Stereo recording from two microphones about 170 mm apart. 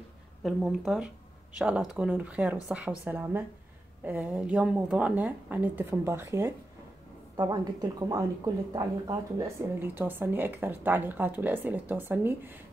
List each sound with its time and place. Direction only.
0.4 s a woman's voice: centre (ahead or behind)